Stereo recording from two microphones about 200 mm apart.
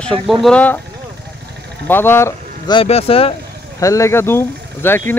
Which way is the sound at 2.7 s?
30° left (ahead or behind).